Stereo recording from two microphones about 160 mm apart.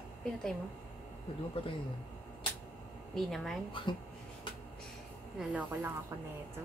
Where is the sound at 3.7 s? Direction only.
30° left (ahead or behind).